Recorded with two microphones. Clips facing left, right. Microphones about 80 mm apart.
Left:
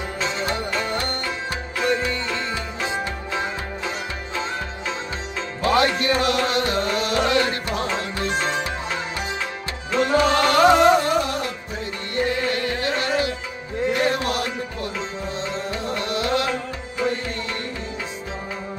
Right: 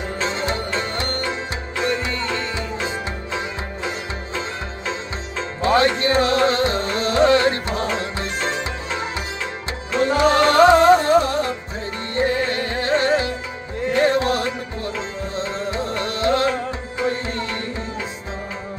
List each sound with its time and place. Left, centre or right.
0.2 s music: right
5.6 s music: right
9.9 s music: right
15.7 s music: right